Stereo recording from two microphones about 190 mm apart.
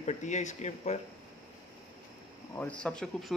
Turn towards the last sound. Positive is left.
turn(degrees=5)  # may be behind; listen again after turning